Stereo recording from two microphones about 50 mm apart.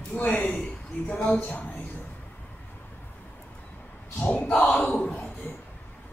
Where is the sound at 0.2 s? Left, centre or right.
Left.